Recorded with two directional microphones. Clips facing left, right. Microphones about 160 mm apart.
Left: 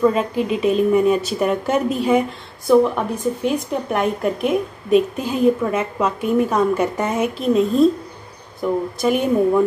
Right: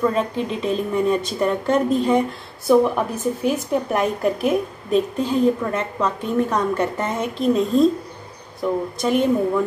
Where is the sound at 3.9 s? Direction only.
Centre (ahead or behind).